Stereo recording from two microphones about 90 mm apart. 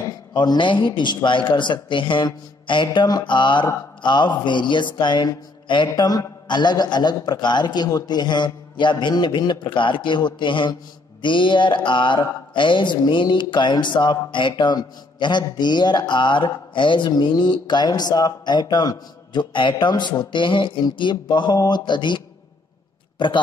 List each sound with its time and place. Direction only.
0.3 s speech: 55° left (ahead or behind)
20.8 s a man's voice: 55° left (ahead or behind)